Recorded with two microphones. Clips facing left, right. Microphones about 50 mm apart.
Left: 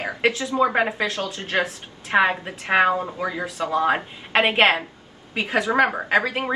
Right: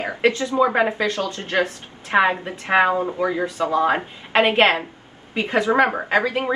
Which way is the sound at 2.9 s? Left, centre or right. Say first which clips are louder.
Right 3 dB; centre.